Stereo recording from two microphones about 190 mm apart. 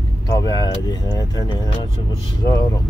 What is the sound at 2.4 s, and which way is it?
Speech, 20° left (ahead or behind).